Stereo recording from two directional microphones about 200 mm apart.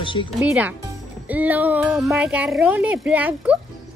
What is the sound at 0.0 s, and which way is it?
Speech, 25° left (ahead or behind).